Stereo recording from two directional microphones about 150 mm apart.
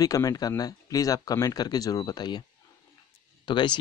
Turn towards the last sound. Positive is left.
turn(degrees=30)  # may be behind; listen again after turning